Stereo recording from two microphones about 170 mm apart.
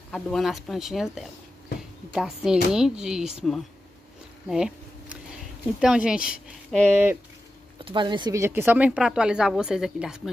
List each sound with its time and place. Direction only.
0.1 s speech: centre (ahead or behind)
4.5 s speech: 5° right (ahead or behind)
7.8 s speech: 30° right (ahead or behind)
8.4 s speech: 15° right (ahead or behind)